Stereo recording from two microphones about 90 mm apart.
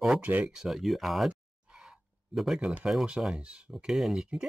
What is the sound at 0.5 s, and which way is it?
Speech, centre (ahead or behind).